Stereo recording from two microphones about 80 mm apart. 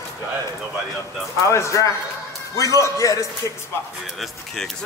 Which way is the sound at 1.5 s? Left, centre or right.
Left.